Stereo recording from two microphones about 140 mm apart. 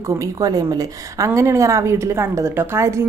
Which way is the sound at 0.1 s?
25° right (ahead or behind).